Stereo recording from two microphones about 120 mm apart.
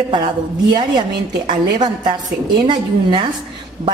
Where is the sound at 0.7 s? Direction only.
40° right (ahead or behind).